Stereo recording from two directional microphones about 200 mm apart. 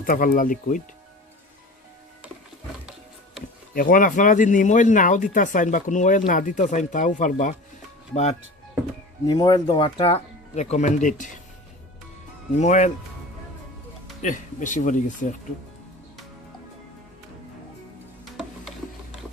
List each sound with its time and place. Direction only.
0.0 s speech: 45° left (ahead or behind)
3.7 s speech: 45° left (ahead or behind)
9.3 s speech: 20° left (ahead or behind); by 11.4 s 40° left (ahead or behind)
12.5 s speech: 35° left (ahead or behind)
14.2 s speech: 40° left (ahead or behind)